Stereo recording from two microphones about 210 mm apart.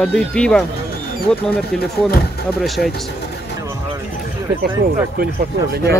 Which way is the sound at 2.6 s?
Centre (ahead or behind).